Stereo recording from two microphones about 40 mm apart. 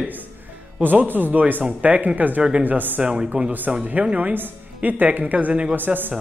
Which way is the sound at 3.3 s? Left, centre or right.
Right.